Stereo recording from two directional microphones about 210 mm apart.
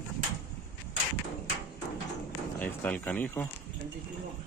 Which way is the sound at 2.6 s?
10° left (ahead or behind).